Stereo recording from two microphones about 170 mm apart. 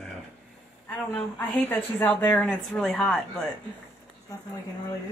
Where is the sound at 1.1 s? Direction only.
10° left (ahead or behind).